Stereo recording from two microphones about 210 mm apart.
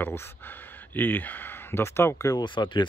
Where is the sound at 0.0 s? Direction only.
10° left (ahead or behind).